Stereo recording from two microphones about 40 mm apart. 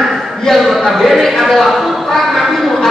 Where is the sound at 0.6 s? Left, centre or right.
Centre.